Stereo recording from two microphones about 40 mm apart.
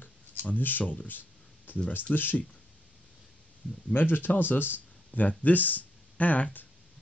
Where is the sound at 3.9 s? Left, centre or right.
Left.